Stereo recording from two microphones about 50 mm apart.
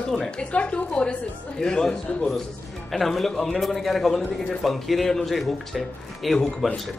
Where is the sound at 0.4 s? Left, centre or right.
Left.